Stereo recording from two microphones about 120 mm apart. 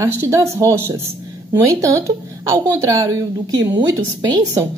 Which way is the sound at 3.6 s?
35° right (ahead or behind).